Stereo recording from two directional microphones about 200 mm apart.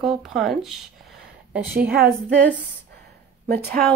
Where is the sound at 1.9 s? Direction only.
50° right (ahead or behind).